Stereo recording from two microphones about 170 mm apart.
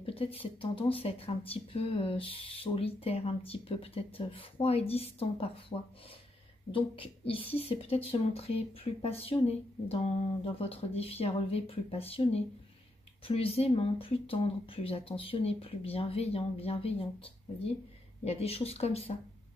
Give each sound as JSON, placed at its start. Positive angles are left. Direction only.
{"t": 0.0, "sound": "speech", "side_deg": 35}